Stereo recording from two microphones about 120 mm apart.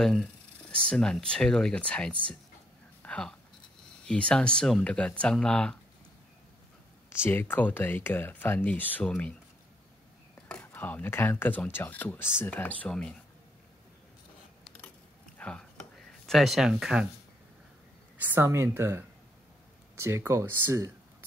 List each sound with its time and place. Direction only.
0.0 s speech: 5° left (ahead or behind)
3.0 s a sound: 10° left (ahead or behind)
4.0 s speech: 10° left (ahead or behind)
7.2 s speech: 15° left (ahead or behind)
10.5 s speech: 15° left (ahead or behind)
15.3 s a sound: 10° left (ahead or behind)
16.1 s speech: centre (ahead or behind)
18.1 s speech: 15° right (ahead or behind)